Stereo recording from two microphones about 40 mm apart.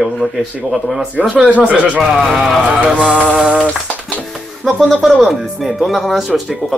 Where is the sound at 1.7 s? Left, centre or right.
Right.